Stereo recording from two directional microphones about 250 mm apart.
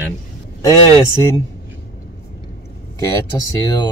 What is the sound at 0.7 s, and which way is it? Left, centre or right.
Speech, centre.